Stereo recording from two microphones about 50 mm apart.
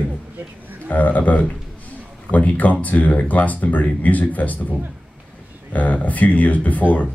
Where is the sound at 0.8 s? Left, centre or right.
Left.